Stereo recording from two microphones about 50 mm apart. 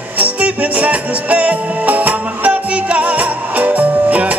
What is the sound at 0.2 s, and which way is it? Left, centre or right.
Music, right.